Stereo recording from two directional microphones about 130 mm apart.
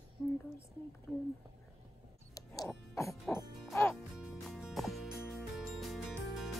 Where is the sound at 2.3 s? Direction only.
30° left (ahead or behind).